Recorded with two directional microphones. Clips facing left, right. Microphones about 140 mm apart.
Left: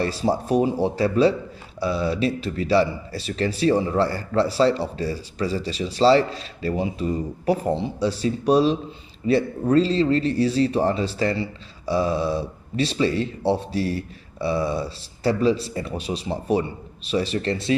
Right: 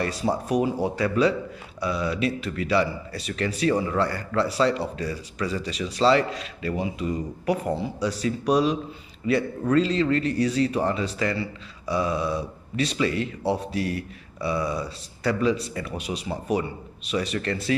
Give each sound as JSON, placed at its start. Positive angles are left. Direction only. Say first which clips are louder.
{"t": 0.0, "sound": "a man's voice", "louder": "left 3 dB", "side_deg": 30}